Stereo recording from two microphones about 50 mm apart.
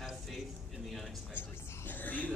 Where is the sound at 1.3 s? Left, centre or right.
Left.